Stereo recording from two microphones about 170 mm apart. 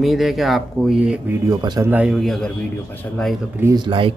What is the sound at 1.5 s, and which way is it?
Speech, 20° right (ahead or behind).